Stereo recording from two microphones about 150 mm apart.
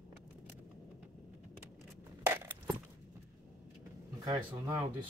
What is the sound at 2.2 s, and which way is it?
Coin, 15° right (ahead or behind).